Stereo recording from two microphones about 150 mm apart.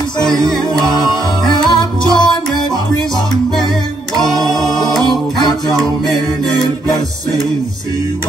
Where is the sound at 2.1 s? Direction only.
30° left (ahead or behind).